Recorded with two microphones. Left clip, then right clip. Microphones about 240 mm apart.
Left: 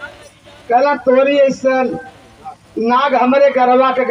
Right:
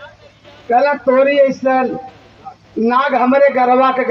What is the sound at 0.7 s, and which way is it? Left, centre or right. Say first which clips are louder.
A man's voice: left 1 dB; left.